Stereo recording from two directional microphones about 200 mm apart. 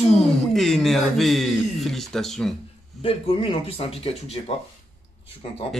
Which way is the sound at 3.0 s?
30° left (ahead or behind).